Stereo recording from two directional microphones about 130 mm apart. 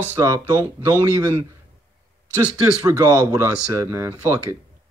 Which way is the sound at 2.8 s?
25° right (ahead or behind).